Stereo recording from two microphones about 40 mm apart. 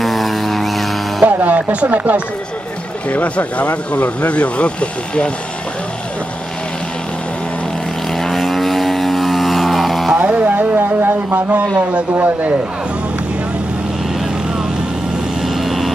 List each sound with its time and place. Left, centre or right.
0.0 s music: centre
1.2 s a man's voice: right
3.1 s speech: left
8.2 s vehicle: centre
10.1 s a sound: right
10.4 s music: right
11.3 s a man's voice: right
15.4 s vehicle: centre